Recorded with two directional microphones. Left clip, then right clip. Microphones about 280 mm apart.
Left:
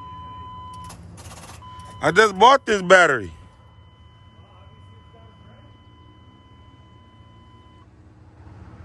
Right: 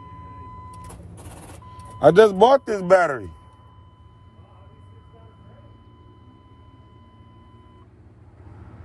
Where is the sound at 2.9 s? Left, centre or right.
Left.